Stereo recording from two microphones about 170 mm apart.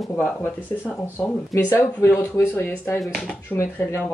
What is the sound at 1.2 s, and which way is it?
Speech, 15° left (ahead or behind).